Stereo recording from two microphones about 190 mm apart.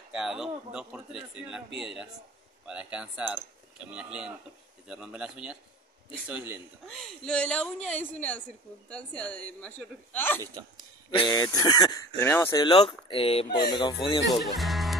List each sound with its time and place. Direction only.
0.1 s speech: 5° right (ahead or behind)
2.6 s a man's voice: 5° right (ahead or behind)
6.9 s speech: centre (ahead or behind)
10.4 s speech: 20° right (ahead or behind)
11.1 s speech: 20° left (ahead or behind)
14.4 s music: centre (ahead or behind)